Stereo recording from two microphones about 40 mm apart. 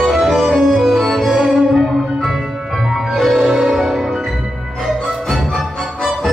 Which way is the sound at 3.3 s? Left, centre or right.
Centre.